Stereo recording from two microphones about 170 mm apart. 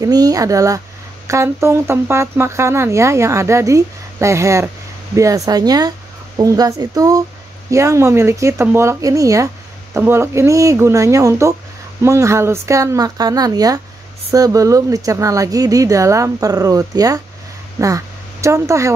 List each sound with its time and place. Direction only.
0.0 s speech: 20° right (ahead or behind)